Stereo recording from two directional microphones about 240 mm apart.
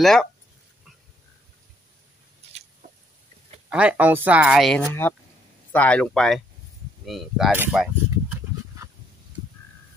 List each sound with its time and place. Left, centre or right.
0.0 s speech: centre
2.4 s a sound: right
2.8 s chicken: right
3.7 s speech: centre